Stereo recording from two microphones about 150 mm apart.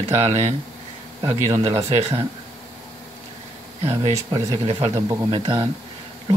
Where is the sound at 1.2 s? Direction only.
20° right (ahead or behind).